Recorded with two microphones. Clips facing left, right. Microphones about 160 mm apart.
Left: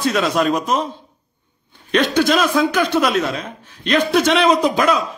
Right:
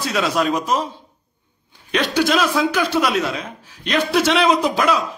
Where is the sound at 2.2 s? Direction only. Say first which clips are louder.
Left 1 dB; 10° right (ahead or behind).